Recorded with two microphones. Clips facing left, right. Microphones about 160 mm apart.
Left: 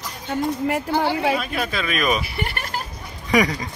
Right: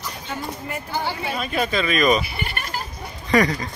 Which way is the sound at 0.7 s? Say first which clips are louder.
Left 4 dB; 80° left.